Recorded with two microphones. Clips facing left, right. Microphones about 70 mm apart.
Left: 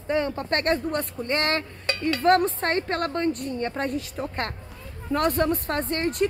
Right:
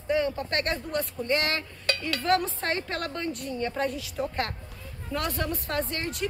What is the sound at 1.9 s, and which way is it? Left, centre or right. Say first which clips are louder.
Dishes: even; left.